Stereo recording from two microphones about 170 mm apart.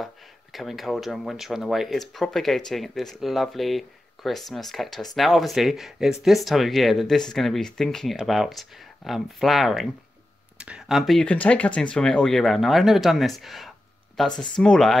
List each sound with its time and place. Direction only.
0.0 s speech: centre (ahead or behind)
14.3 s speech: 25° left (ahead or behind)
14.6 s speech: 5° left (ahead or behind)